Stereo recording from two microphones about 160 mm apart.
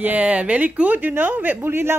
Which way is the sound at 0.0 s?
10° right (ahead or behind).